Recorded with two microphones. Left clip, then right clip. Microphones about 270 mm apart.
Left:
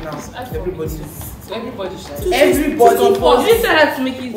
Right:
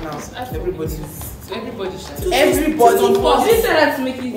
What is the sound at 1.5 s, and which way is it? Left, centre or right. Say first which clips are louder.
Speech: left 1 dB; centre.